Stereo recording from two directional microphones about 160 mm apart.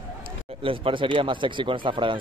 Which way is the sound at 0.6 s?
35° right (ahead or behind).